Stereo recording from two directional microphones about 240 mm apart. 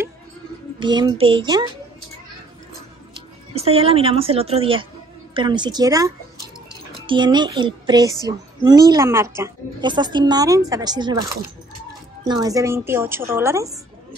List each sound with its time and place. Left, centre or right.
0.7 s a woman's voice: centre
3.5 s a woman's voice: right
12.3 s speech: centre